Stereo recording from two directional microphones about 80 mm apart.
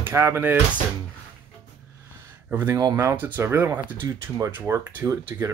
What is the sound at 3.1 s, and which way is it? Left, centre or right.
Speech, right.